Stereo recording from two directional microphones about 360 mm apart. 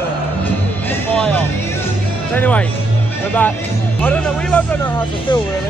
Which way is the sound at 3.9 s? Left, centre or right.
Centre.